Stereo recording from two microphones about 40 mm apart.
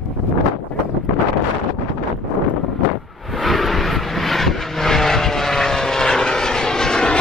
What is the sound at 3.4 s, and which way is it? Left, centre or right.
Vehicle, centre.